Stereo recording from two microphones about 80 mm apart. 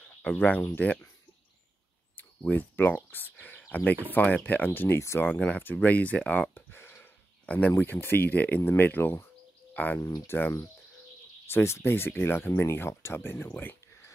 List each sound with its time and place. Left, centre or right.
0.0 s speech: centre
2.1 s speech: left
5.2 s speech: left
7.4 s speech: centre
9.9 s speech: left
10.3 s speech: left